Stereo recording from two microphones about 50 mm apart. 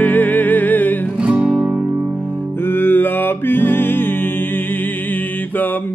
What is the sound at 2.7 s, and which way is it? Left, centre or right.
Music, left.